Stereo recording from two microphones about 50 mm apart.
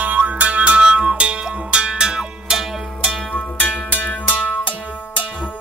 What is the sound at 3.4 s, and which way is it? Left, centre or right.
Music, left.